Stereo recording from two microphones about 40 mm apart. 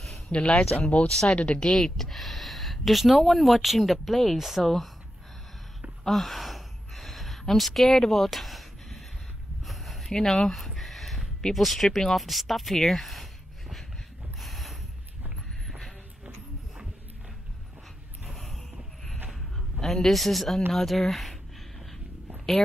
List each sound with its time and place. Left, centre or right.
0.3 s speech: centre
0.6 s speech: left
1.1 s speech: centre
6.0 s gasp: centre
9.7 s a sound: centre
11.5 s speech: centre
14.4 s mechanisms: centre
18.4 s vehicle: centre
19.8 s speech: centre